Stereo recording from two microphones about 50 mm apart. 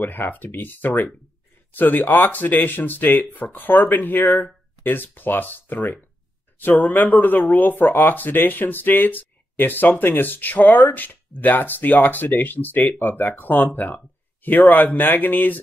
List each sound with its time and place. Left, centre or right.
0.0 s speech: left